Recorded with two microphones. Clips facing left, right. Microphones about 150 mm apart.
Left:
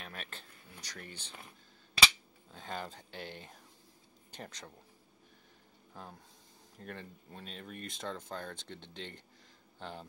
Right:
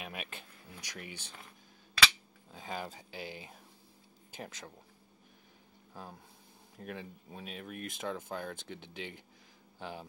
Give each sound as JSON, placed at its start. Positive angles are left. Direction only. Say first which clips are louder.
{"t": 0.0, "sound": "a sound", "louder": "right 3 dB", "side_deg": -10}
{"t": 2.5, "sound": "speech", "louder": "right 1 dB", "side_deg": -5}
{"t": 6.8, "sound": "speech", "louder": "right 3 dB", "side_deg": -5}